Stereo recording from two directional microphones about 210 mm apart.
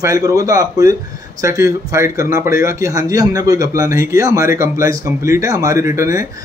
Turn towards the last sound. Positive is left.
turn(degrees=-15)  # may be behind; listen again after turning